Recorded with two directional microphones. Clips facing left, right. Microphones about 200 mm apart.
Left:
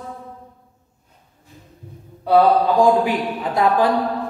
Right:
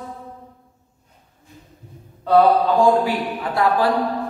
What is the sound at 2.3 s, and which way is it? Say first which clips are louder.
A man's voice: even; 15° left (ahead or behind).